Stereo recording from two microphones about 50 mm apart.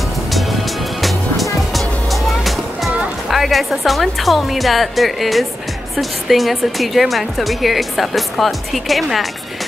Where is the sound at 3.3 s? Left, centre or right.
Centre.